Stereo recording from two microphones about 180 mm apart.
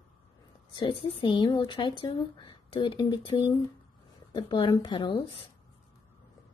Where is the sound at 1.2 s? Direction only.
25° left (ahead or behind).